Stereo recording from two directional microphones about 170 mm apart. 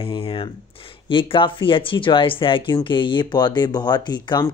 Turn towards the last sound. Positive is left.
turn(degrees=25)  # may be behind; listen again after turning